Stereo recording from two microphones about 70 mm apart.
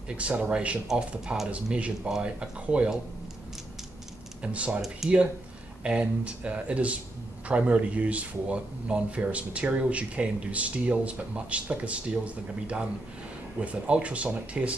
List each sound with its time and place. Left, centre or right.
0.2 s speech: centre
4.4 s speech: centre
5.9 s speech: centre
13.6 s speech: centre